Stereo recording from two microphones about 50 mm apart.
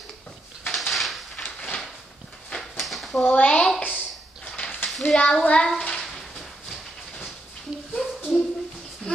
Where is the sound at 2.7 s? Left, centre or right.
Centre.